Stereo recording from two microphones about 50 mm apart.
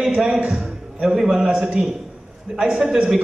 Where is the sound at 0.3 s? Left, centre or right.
Right.